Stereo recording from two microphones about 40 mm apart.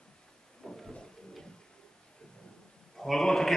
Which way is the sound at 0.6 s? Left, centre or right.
Centre.